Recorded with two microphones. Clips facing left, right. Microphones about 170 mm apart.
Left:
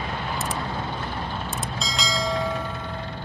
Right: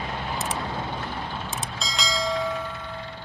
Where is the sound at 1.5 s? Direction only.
Centre (ahead or behind).